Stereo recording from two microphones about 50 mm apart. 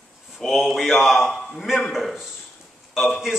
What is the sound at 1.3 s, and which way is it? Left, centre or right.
A man's voice, centre.